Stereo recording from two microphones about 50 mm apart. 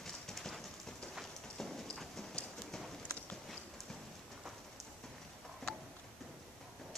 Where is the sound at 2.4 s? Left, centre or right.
Left.